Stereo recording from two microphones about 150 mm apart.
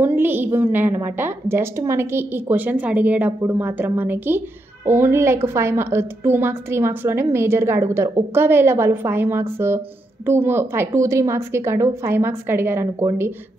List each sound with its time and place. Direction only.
0.0 s a woman's voice: 15° right (ahead or behind)